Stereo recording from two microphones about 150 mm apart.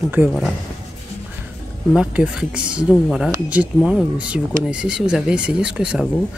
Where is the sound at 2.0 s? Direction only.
5° right (ahead or behind).